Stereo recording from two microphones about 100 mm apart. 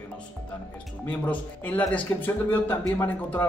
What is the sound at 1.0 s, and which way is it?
Speech, 15° left (ahead or behind).